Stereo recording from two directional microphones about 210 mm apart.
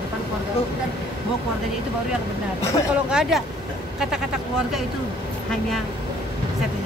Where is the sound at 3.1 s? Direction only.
5° right (ahead or behind).